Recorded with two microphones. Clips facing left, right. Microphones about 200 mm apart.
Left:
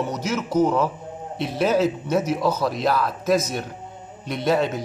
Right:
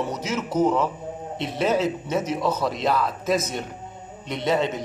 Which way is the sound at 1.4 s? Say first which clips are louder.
Left 3 dB; centre (ahead or behind).